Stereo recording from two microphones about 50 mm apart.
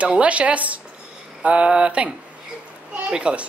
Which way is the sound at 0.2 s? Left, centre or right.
Right.